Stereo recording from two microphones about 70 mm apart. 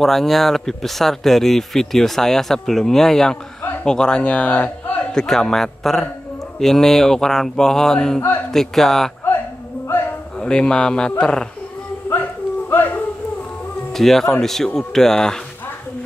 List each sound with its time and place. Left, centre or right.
0.0 s speech: centre; by 5.0 s left
5.1 s speech: centre
6.6 s mantra: centre
8.5 s speech: centre
10.4 s mantra: centre
12.6 s music: left
13.9 s speech: centre